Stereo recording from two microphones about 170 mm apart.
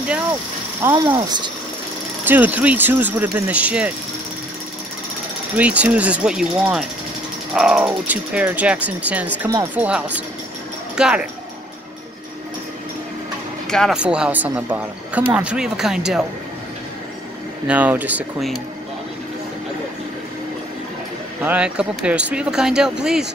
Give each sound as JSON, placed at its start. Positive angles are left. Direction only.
{"t": 0.9, "sound": "speech", "side_deg": -25}
{"t": 2.2, "sound": "speech", "side_deg": -10}
{"t": 5.6, "sound": "speech", "side_deg": -5}
{"t": 13.7, "sound": "speech", "side_deg": 0}
{"t": 17.6, "sound": "speech", "side_deg": -10}
{"t": 21.4, "sound": "speech", "side_deg": -10}